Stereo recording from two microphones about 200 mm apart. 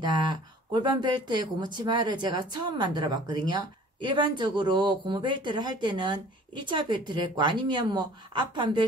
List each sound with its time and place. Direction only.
0.0 s speech: 20° right (ahead or behind)